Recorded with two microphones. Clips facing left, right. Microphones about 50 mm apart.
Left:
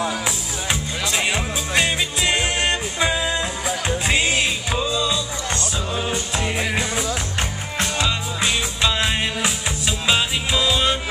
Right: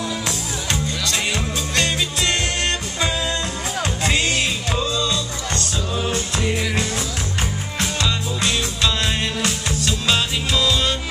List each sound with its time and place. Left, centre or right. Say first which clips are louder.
0.7 s music: even; centre